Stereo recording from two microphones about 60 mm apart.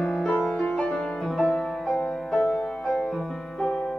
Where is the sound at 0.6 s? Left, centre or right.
Left.